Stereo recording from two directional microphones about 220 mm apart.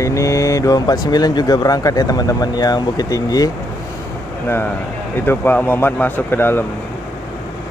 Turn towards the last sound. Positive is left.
turn(degrees=10)  # may be behind; listen again after turning